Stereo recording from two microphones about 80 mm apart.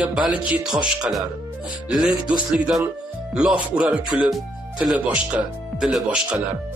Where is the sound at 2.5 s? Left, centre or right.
Centre.